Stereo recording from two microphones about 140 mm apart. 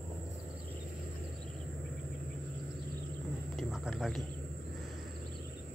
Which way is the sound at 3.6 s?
Centre (ahead or behind).